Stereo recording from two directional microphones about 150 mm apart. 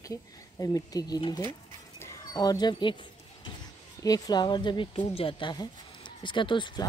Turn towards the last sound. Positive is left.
turn(degrees=30)  # may be behind; listen again after turning